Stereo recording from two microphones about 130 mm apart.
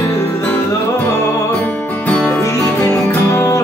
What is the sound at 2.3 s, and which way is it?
Music, 20° left (ahead or behind).